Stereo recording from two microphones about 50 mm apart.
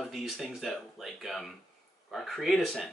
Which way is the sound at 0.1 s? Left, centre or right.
Centre.